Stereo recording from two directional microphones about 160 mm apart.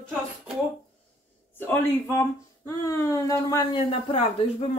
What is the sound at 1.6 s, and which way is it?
A man's voice, 15° left (ahead or behind).